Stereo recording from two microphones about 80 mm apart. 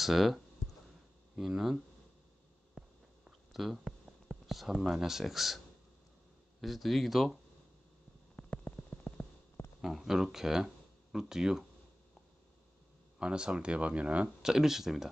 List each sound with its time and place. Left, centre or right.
0.0 s clicking: centre
1.3 s speech: centre
2.8 s a sound: centre
3.3 s speech: centre
6.6 s speech: centre
8.4 s rain on surface: centre
9.8 s speech: centre
13.2 s speech: centre